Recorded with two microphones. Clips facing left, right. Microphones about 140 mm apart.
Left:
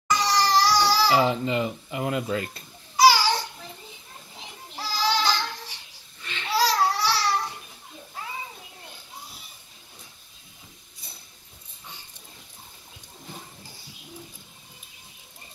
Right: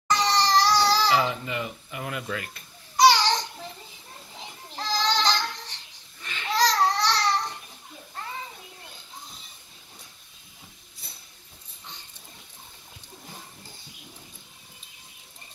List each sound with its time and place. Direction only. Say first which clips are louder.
0.1 s crying: even; 10° left (ahead or behind)
1.1 s a child's voice: left 3 dB; 25° left (ahead or behind)
3.0 s babbling: even; 5° left (ahead or behind)
4.7 s child singing: even; 10° left (ahead or behind)
6.5 s a sound: even; 10° left (ahead or behind)